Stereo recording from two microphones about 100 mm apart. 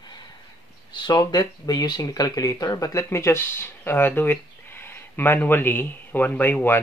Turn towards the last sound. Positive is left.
turn(degrees=20)  # may be behind; listen again after turning